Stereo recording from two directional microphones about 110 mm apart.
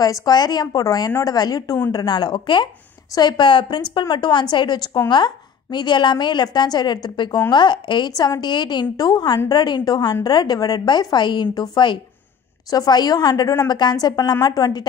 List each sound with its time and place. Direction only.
0.0 s a woman's voice: 35° left (ahead or behind)